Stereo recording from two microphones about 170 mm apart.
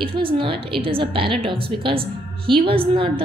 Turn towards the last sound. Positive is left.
turn(degrees=-30)  # may be behind; listen again after turning